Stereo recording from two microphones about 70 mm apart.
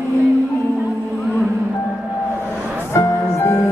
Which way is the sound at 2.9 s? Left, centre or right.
Left.